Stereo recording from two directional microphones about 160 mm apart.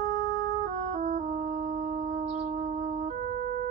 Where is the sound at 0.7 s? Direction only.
50° right (ahead or behind).